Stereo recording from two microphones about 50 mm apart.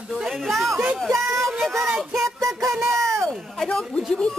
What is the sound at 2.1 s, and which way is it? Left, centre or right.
Child singing, right.